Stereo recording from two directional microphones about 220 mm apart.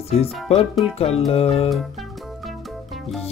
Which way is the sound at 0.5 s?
25° left (ahead or behind).